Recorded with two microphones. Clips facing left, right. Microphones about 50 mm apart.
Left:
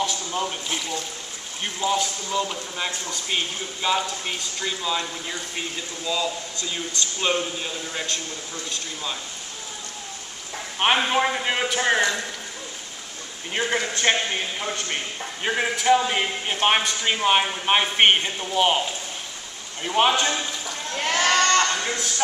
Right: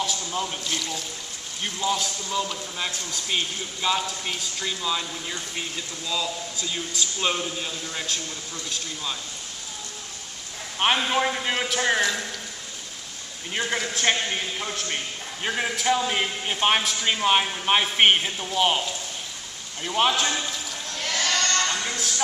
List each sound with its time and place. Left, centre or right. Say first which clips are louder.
0.0 s speech: left 2 dB; centre
11.1 s speech: left 2 dB; centre
13.5 s speech: left 3 dB; centre
20.9 s sheep: left 5 dB; left; by 21.9 s centre